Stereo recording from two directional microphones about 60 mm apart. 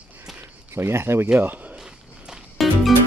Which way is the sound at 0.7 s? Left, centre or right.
Right.